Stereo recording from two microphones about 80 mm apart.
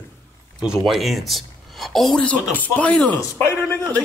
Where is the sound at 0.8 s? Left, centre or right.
Centre.